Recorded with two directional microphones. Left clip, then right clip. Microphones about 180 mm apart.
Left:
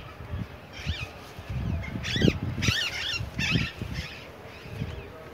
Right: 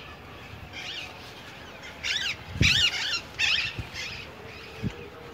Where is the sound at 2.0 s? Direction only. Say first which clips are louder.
Left 1 dB; 35° left (ahead or behind).